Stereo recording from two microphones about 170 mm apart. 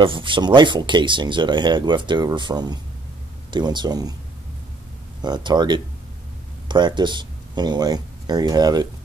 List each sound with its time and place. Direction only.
0.0 s speech: 30° right (ahead or behind)
5.2 s speech: 25° right (ahead or behind)